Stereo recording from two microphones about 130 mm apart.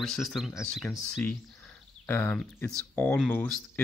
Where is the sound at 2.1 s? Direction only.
15° left (ahead or behind).